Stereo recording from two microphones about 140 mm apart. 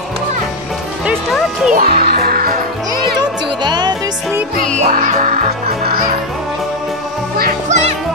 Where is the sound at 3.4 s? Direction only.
30° right (ahead or behind).